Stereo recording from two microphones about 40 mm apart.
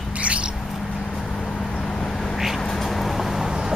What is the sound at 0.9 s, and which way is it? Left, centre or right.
Vehicle, left.